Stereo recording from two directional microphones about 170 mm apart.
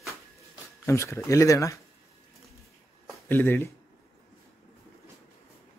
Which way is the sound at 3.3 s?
10° left (ahead or behind).